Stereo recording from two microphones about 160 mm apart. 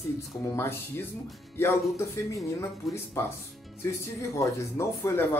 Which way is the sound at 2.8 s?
Centre (ahead or behind).